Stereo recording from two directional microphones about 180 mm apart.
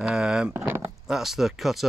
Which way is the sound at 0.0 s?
5° right (ahead or behind).